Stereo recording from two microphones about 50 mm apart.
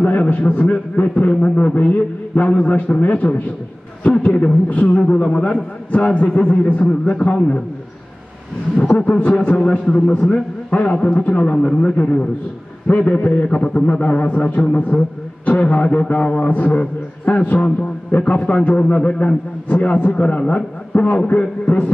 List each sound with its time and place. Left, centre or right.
0.0 s a man's voice: left
4.1 s a man's voice: centre
4.6 s a man's voice: left
5.0 s a man's voice: centre
8.9 s a man's voice: left